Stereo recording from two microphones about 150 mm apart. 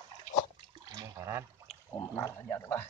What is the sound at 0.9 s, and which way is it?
Water, 25° right (ahead or behind).